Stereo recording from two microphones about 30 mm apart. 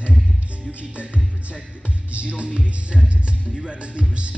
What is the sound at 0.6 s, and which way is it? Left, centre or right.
Music, right.